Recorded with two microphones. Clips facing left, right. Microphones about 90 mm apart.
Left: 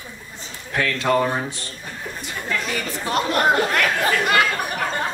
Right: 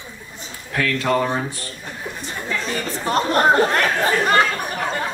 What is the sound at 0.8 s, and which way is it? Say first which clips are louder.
Speech: right 1 dB; 30° left (ahead or behind).